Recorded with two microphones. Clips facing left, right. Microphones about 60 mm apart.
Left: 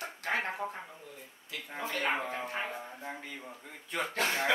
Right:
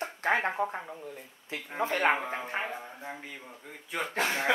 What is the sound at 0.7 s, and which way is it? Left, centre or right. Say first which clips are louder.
Speech: right 4 dB; right.